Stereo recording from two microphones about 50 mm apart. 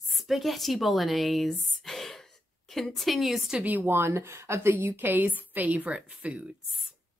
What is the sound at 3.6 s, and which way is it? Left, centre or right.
Speech, right.